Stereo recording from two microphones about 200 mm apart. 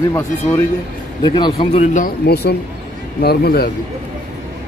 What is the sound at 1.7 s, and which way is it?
Speech, 35° left (ahead or behind).